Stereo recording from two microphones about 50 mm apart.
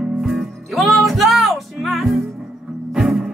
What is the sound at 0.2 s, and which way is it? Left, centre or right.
Music, centre.